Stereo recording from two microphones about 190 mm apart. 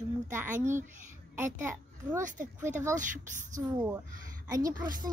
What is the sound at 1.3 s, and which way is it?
Speech, 10° right (ahead or behind).